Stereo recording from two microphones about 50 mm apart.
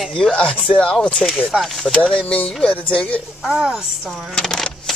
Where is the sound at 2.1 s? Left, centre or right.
Left.